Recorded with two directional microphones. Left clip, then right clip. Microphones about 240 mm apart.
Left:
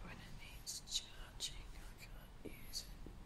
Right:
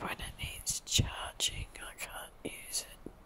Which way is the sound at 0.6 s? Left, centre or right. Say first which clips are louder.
Right 11 dB; right.